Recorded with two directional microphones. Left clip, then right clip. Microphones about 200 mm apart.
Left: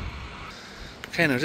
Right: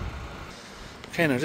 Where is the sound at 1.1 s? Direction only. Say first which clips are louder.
Left 1 dB; 5° right (ahead or behind).